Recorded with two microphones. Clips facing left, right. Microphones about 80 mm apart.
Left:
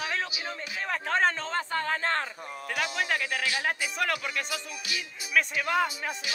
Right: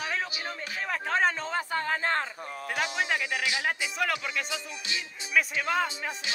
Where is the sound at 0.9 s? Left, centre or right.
Centre.